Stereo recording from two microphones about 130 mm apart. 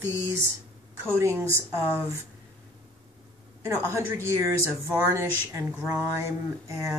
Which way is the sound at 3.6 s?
20° right (ahead or behind).